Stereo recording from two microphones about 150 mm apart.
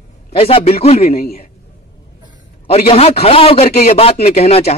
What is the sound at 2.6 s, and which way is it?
A man's voice, 40° left (ahead or behind).